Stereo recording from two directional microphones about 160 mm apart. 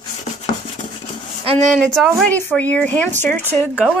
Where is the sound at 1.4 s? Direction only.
35° right (ahead or behind).